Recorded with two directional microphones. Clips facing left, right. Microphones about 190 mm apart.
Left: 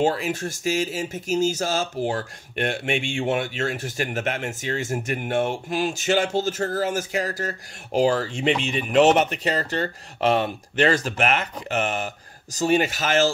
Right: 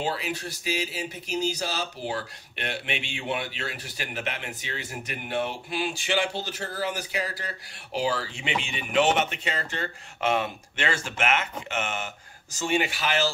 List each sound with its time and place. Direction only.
0.0 s speech: 50° left (ahead or behind)